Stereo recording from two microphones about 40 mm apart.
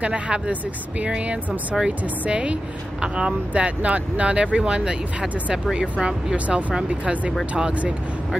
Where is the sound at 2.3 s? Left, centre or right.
Right.